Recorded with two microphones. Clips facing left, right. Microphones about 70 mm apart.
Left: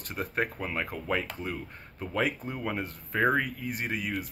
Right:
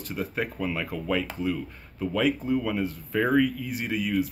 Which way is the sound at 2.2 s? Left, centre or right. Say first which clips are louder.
Right 7 dB; left.